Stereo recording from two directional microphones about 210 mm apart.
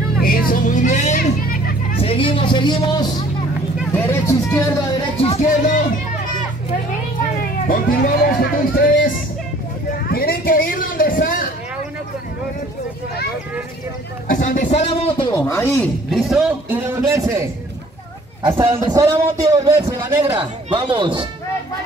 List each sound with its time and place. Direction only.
0.2 s vehicle: 45° left (ahead or behind)
2.0 s a sound: 25° left (ahead or behind)
3.9 s speech: 10° left (ahead or behind)
5.2 s a sound: 35° left (ahead or behind)
7.6 s speech: 40° left (ahead or behind)
10.0 s a sound: 45° left (ahead or behind)
14.2 s speech: 40° left (ahead or behind)
15.3 s speech: 10° left (ahead or behind)
16.1 s a man's voice: centre (ahead or behind)
20.3 s speech: 25° right (ahead or behind)